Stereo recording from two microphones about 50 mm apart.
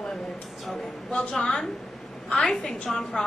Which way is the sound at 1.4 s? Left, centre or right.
Centre.